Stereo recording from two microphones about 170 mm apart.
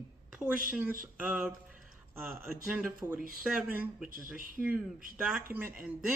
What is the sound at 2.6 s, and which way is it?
Speech, 5° right (ahead or behind).